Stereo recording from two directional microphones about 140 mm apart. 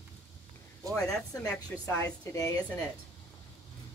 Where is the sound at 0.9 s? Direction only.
5° left (ahead or behind).